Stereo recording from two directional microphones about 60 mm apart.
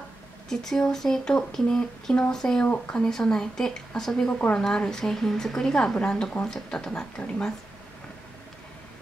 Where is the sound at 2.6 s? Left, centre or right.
Left.